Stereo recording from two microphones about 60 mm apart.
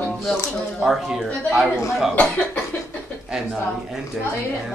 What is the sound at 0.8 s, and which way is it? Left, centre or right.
Speech, centre.